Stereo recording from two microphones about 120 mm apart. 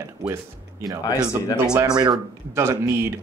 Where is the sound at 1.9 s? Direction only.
35° right (ahead or behind).